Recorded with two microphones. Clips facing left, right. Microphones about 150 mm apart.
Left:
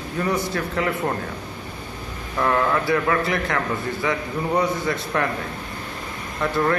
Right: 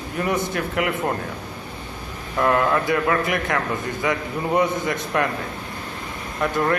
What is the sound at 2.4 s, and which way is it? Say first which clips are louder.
A man's voice: right 1 dB; 20° right (ahead or behind).